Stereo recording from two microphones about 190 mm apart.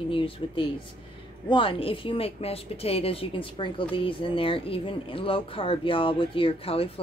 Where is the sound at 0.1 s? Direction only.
30° left (ahead or behind).